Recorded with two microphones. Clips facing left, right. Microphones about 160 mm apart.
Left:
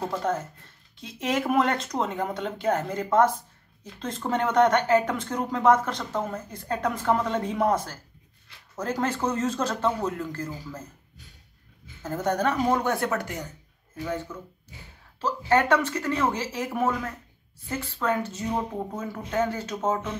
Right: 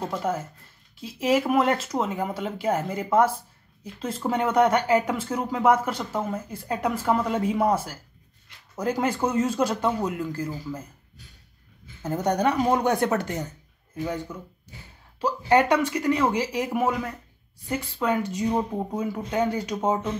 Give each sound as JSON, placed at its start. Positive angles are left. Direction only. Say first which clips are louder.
{"t": 0.3, "sound": "speech", "louder": "even", "side_deg": -10}
{"t": 12.0, "sound": "speech", "louder": "right 2 dB", "side_deg": -15}